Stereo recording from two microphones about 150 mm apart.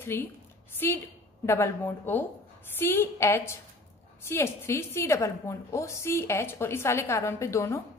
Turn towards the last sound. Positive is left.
turn(degrees=20)  # may be behind; listen again after turning